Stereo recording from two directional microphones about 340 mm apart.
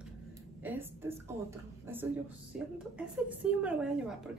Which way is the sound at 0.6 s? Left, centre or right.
Centre.